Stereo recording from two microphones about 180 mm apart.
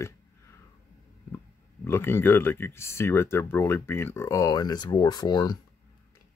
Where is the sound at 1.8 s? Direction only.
15° left (ahead or behind).